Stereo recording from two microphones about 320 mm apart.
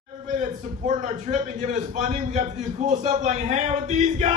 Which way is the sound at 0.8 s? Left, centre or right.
Right.